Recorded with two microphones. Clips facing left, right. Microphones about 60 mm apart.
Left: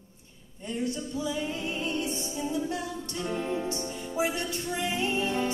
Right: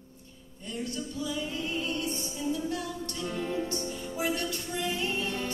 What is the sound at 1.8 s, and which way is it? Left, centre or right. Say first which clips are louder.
Music: left 2 dB; centre.